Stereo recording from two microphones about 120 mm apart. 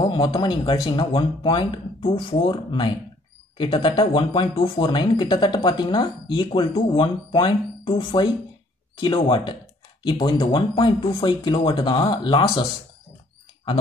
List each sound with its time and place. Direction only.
0.0 s speech: 45° left (ahead or behind)